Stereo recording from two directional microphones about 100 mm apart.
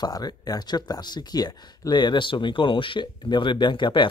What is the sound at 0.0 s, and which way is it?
Speech, 40° left (ahead or behind).